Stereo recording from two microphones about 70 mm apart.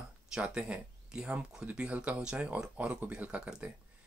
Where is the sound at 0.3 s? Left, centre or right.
Centre.